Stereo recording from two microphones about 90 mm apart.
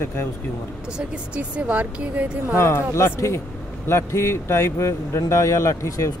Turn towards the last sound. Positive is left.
turn(degrees=35)  # may be behind; listen again after turning